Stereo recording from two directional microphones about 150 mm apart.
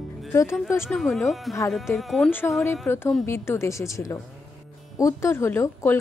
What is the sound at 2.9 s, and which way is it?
Speech, 15° left (ahead or behind).